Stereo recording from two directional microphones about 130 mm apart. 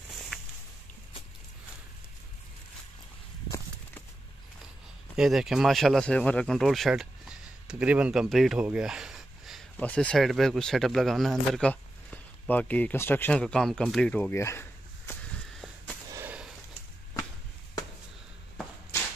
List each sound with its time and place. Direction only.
5.1 s speech: 5° right (ahead or behind)
8.6 s a sound: 5° right (ahead or behind)
9.8 s speech: 10° left (ahead or behind)
11.7 s speech: 15° left (ahead or behind)
14.3 s a sound: 20° left (ahead or behind)
16.3 s sniff: 10° right (ahead or behind)